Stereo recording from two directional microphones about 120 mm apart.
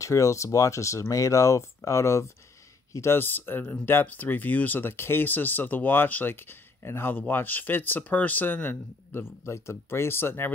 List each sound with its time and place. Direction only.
0.0 s speech: 25° left (ahead or behind)